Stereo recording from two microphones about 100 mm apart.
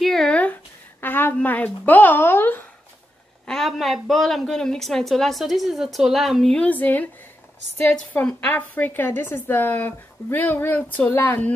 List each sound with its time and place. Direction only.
0.0 s a sound: 5° left (ahead or behind)
1.0 s a woman's voice: 20° left (ahead or behind)
3.4 s a woman's voice: 5° left (ahead or behind); by 11.5 s 20° left (ahead or behind)